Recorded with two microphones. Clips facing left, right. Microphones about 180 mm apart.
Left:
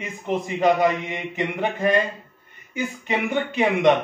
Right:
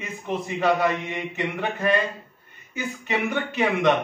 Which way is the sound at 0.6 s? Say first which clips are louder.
Left 3 dB; 15° left (ahead or behind).